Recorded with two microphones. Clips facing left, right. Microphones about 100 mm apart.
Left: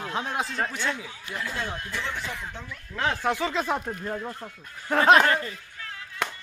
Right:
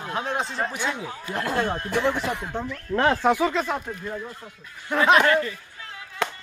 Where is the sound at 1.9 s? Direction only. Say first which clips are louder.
Right 9 dB; 70° right (ahead or behind).